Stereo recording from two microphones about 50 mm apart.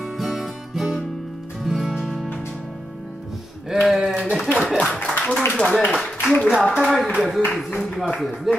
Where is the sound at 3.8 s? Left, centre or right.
Centre.